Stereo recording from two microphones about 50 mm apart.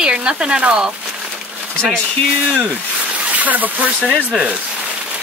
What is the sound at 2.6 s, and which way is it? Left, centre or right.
Speech, right.